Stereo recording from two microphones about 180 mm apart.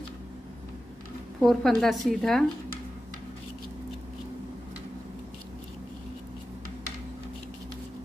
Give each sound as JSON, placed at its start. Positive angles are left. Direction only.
{"t": 1.4, "sound": "a woman's voice", "side_deg": 0}